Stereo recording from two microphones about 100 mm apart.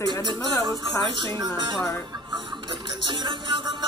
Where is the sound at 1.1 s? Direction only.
50° right (ahead or behind).